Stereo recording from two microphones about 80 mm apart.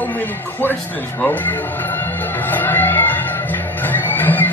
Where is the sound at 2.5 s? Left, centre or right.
Left.